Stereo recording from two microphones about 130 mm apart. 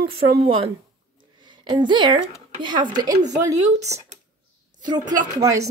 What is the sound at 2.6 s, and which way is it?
Speech, 35° right (ahead or behind).